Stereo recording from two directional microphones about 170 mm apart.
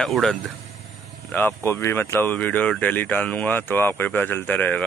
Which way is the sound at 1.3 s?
15° left (ahead or behind).